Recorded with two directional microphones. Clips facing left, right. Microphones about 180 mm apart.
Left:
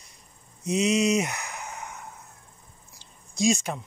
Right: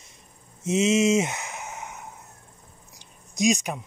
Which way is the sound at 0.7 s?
25° right (ahead or behind).